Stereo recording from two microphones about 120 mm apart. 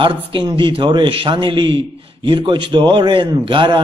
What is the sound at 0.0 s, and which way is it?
A man's voice, 45° right (ahead or behind).